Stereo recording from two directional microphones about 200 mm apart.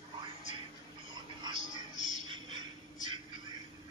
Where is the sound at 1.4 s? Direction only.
25° right (ahead or behind).